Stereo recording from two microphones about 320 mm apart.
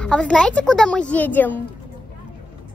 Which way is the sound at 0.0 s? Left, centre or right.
Centre.